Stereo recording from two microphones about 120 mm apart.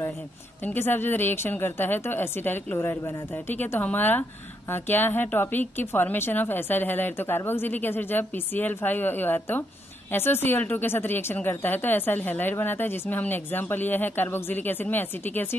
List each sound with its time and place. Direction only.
0.7 s a woman's voice: 20° left (ahead or behind)